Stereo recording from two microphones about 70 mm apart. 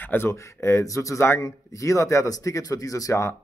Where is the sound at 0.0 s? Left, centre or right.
Left.